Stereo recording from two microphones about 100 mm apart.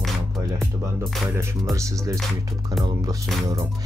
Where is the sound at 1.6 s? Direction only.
30° right (ahead or behind).